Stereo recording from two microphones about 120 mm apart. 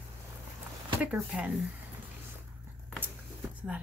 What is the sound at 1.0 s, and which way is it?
Speech, 10° right (ahead or behind).